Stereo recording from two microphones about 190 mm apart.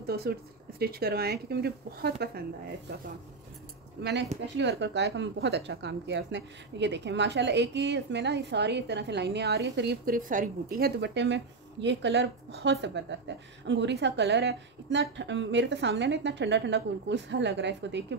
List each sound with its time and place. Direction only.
0.0 s a woman's voice: 55° right (ahead or behind)
4.0 s a woman's voice: 65° right (ahead or behind)